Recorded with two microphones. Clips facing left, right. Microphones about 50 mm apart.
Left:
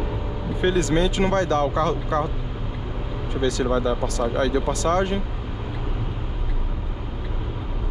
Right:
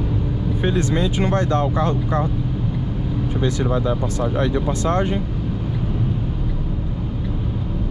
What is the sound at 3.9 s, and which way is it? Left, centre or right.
Speech, centre.